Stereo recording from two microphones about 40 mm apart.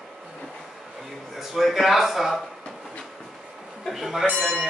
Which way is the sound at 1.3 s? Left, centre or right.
Centre.